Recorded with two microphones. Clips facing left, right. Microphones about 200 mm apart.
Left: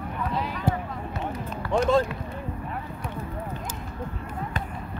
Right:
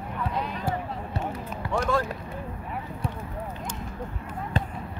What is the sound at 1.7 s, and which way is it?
Run, 20° left (ahead or behind).